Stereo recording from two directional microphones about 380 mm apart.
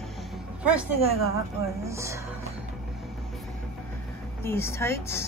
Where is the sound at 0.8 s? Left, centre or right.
Right.